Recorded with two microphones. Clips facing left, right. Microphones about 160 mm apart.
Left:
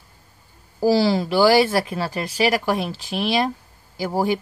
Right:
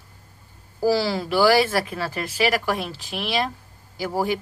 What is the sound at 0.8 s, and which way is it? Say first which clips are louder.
Speech: left 3 dB; 20° left (ahead or behind).